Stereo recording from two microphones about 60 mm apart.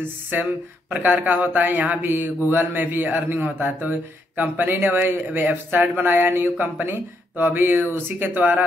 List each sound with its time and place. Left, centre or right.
0.3 s a man's voice: right